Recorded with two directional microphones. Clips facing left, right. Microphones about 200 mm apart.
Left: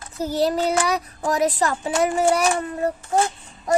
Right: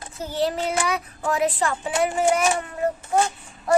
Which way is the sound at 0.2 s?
40° left (ahead or behind).